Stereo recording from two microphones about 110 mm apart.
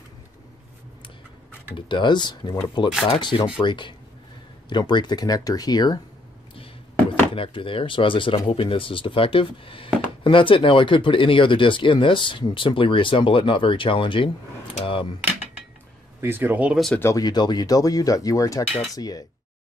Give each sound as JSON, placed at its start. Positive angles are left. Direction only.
{"t": 1.8, "sound": "speech", "side_deg": 45}
{"t": 6.5, "sound": "a sound", "side_deg": 55}
{"t": 7.3, "sound": "speech", "side_deg": 55}
{"t": 16.2, "sound": "speech", "side_deg": -20}
{"t": 16.7, "sound": "speech", "side_deg": 5}
{"t": 17.0, "sound": "speech", "side_deg": 35}